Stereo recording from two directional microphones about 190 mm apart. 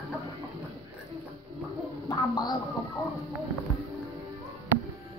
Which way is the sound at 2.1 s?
20° left (ahead or behind).